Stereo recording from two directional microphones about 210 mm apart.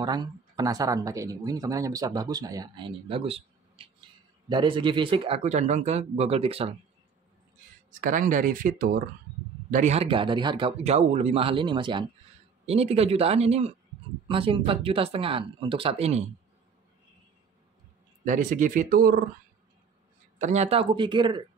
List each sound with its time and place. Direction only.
0.0 s speech: 20° right (ahead or behind)
8.0 s speech: 40° right (ahead or behind)
18.2 s speech: 40° right (ahead or behind)
20.3 s speech: 35° right (ahead or behind)